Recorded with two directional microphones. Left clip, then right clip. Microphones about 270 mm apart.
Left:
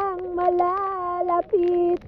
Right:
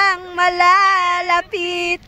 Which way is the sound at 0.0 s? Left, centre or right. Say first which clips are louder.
Right 8 dB; right.